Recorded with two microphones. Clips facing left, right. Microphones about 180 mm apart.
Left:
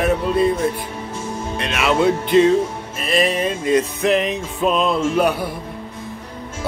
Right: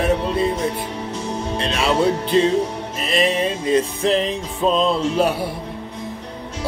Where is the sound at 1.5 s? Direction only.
30° right (ahead or behind).